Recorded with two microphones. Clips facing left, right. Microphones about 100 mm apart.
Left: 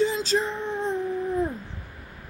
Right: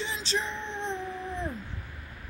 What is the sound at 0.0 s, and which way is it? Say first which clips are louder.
Music: left 9 dB; 40° left (ahead or behind).